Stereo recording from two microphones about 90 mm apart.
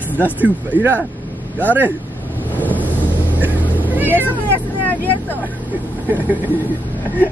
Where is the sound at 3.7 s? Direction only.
20° right (ahead or behind).